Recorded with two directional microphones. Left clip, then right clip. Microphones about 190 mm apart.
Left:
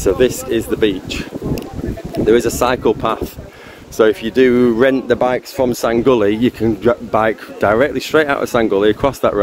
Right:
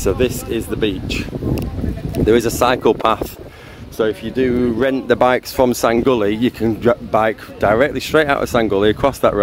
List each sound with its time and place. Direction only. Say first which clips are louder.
0.2 s speech: left 4 dB; 10° right (ahead or behind)
2.1 s speech: left 1 dB; 25° right (ahead or behind)
4.0 s speech: left 6 dB; 10° left (ahead or behind)
5.0 s speech: right 1 dB; 30° right (ahead or behind)
5.3 s speech: right 2 dB; 40° right (ahead or behind)
6.0 s speech: left 3 dB; 20° right (ahead or behind)